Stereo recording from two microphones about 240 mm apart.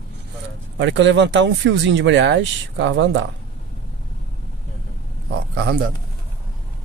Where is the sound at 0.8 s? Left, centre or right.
Right.